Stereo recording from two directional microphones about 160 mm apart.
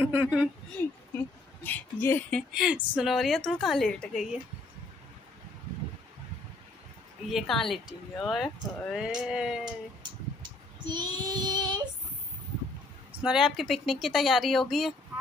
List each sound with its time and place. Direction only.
0.0 s a sound: 15° right (ahead or behind)
0.7 s speech: 15° left (ahead or behind)
2.5 s a woman's voice: 5° right (ahead or behind)
7.2 s a woman's voice: centre (ahead or behind)
10.9 s child singing: 30° right (ahead or behind)
13.2 s a woman's voice: 5° right (ahead or behind)